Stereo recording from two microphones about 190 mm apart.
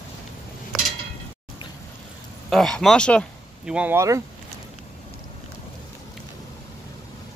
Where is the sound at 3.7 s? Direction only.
10° right (ahead or behind).